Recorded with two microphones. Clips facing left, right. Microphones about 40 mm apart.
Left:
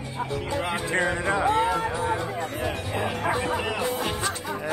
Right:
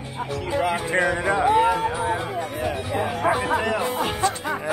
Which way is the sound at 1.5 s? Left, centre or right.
Right.